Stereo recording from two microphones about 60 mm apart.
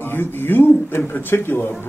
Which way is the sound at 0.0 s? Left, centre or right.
Left.